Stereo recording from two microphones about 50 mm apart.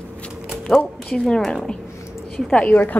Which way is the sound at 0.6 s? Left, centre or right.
Centre.